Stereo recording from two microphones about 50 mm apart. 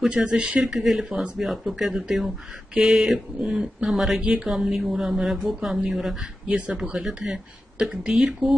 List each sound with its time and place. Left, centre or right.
0.1 s speech: right
0.7 s speech: centre